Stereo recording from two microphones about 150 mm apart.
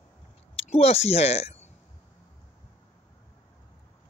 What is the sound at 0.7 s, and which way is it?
Speech, 45° left (ahead or behind).